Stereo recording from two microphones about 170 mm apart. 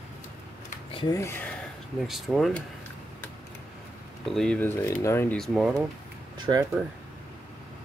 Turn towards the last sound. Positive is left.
turn(degrees=-25)  # may be behind; listen again after turning